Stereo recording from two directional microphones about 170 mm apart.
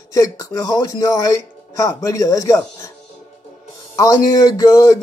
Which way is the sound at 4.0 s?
20° left (ahead or behind).